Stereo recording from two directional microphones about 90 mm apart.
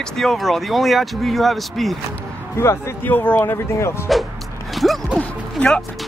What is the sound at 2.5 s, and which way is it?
Speech, 30° left (ahead or behind).